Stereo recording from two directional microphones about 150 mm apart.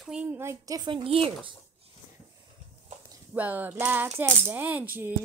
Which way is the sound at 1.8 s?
40° right (ahead or behind).